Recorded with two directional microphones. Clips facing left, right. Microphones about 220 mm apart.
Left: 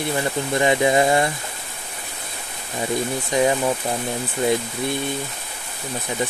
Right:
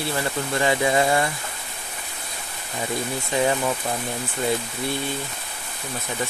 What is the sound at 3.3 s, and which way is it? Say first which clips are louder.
Speech: left 3 dB; 15° left (ahead or behind).